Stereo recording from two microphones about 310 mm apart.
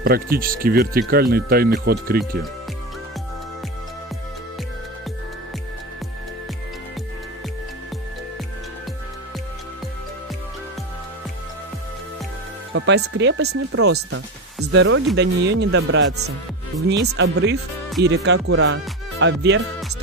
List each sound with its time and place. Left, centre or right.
0.0 s speech: right
12.7 s music: right
13.2 s speech: right